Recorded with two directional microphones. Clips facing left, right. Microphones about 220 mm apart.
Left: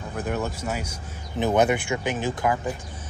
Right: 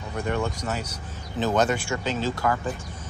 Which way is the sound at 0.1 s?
5° left (ahead or behind).